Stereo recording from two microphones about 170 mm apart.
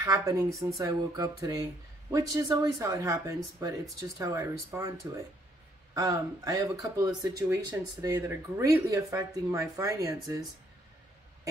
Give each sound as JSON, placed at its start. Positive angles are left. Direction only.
{"t": 0.0, "sound": "speech", "side_deg": -20}